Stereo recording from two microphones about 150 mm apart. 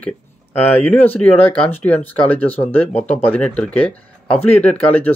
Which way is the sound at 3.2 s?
10° left (ahead or behind).